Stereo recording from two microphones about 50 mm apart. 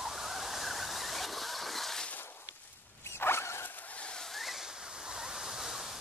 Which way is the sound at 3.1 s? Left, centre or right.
Left.